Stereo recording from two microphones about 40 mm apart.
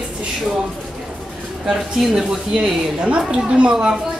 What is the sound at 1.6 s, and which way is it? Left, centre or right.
Speech, centre.